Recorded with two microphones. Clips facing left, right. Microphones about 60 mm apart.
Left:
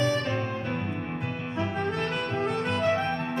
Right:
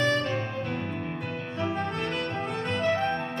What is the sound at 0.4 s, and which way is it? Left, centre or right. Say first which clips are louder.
Music: left 1 dB; centre.